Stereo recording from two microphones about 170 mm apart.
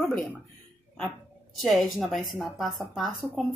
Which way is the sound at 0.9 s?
5° left (ahead or behind).